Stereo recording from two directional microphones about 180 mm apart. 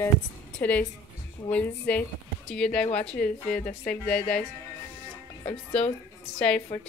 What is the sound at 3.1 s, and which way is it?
Speech, 5° left (ahead or behind).